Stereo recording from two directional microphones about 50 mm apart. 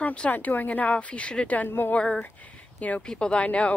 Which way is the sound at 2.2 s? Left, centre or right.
Left.